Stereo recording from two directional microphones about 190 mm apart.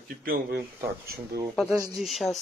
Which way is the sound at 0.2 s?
55° right (ahead or behind).